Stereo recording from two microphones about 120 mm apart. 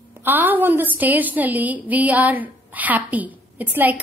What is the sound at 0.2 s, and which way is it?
A woman's voice, 15° right (ahead or behind).